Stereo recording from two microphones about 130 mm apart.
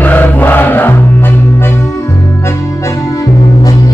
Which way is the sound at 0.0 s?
15° left (ahead or behind).